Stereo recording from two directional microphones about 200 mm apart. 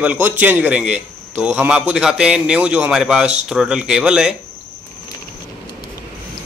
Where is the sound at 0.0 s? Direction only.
10° right (ahead or behind).